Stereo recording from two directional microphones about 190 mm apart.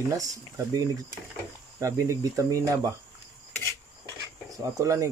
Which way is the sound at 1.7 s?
15° right (ahead or behind).